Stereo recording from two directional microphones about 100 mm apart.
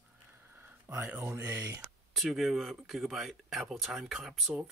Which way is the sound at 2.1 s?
Centre (ahead or behind).